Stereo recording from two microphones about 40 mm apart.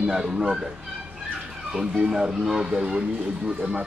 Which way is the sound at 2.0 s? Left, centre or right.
Centre.